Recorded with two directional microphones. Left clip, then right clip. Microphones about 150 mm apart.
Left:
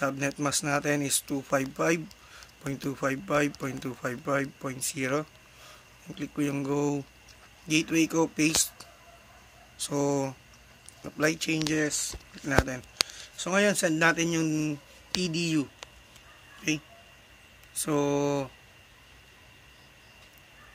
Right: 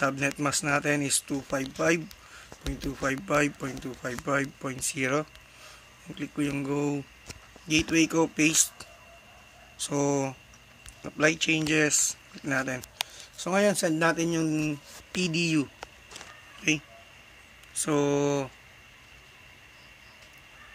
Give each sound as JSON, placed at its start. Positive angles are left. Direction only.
{"t": 0.0, "sound": "speech", "side_deg": 0}
{"t": 3.3, "sound": "speech", "side_deg": 0}
{"t": 3.8, "sound": "speech", "side_deg": 10}
{"t": 4.3, "sound": "speech", "side_deg": 0}
{"t": 9.8, "sound": "speech", "side_deg": 0}
{"t": 11.9, "sound": "a man's voice", "side_deg": -10}
{"t": 17.8, "sound": "speech", "side_deg": 5}